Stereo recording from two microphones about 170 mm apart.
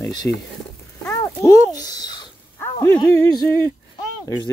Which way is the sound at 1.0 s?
15° left (ahead or behind).